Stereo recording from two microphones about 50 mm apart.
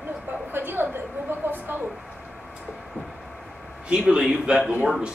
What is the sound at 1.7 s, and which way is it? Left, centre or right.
Speech, right.